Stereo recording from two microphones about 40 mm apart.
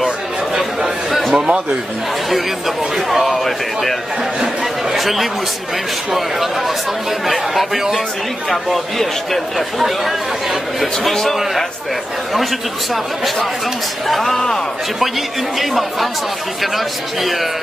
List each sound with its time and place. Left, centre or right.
1.3 s a sound: centre
3.1 s speech: centre
4.9 s speech: centre
7.2 s speech: centre
12.9 s speech: centre
15.6 s speech: centre